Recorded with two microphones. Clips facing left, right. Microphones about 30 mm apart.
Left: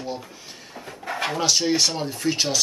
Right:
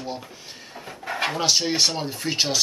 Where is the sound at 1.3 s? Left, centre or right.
Centre.